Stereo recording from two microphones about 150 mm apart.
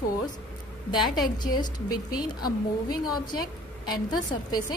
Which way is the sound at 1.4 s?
30° left (ahead or behind).